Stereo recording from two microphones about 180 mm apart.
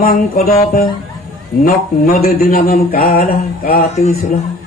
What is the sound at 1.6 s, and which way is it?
Speech, 55° left (ahead or behind).